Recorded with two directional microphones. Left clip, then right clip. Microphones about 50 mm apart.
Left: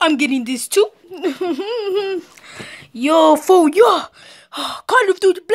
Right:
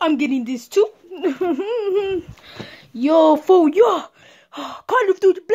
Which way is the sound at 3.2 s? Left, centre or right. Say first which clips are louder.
Left 4 dB; centre.